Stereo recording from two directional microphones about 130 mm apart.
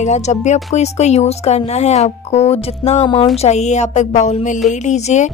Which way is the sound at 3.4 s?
60° left (ahead or behind).